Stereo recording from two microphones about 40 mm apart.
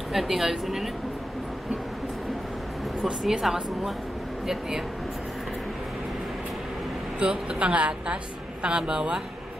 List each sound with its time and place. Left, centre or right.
0.1 s a woman's voice: centre
3.1 s a woman's voice: centre
7.2 s speech: right